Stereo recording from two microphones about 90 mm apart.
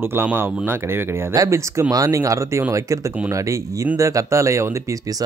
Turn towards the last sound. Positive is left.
turn(degrees=-35)  # may be behind; listen again after turning